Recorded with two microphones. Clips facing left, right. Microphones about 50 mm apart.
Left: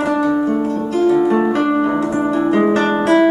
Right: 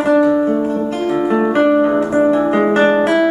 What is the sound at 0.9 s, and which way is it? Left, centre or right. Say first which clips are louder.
Music: left 4 dB; right.